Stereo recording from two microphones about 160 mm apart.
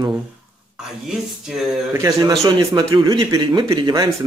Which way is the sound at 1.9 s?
20° right (ahead or behind).